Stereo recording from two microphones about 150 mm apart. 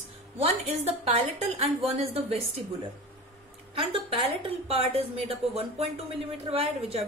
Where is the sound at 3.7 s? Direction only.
40° right (ahead or behind).